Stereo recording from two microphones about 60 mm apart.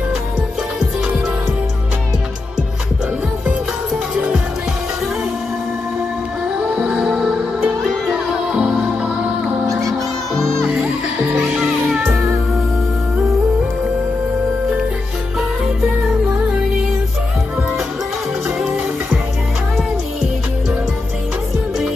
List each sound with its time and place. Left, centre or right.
6.7 s music: centre
10.3 s music: centre
11.3 s music: right
11.6 s music: centre
15.3 s music: centre
18.6 s music: centre